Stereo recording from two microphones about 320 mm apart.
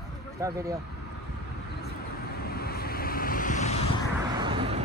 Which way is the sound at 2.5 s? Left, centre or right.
Left.